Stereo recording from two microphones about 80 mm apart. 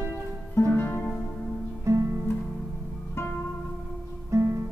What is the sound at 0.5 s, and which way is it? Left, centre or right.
Music, left.